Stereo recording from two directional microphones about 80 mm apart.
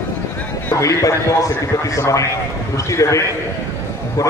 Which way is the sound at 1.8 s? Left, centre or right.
Left.